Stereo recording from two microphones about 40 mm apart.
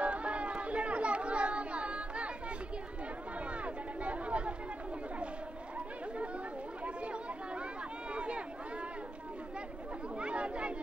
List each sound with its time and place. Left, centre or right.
0.0 s chatter: right
3.6 s chatter: right
6.8 s chatter: right
8.1 s a sound: right
10.1 s chatter: right